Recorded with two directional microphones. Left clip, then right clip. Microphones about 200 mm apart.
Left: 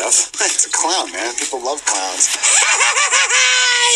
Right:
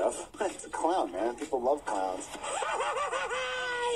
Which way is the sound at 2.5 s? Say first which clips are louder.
Left 16 dB; 20° left (ahead or behind).